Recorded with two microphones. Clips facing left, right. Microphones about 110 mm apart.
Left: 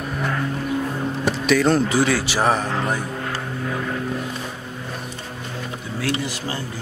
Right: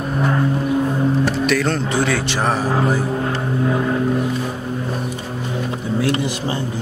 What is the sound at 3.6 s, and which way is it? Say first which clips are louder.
Vehicle: right 8 dB; 30° right (ahead or behind).